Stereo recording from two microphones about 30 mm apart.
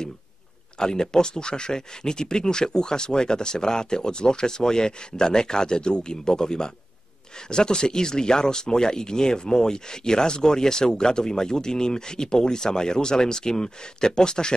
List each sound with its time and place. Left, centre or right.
0.7 s speech: left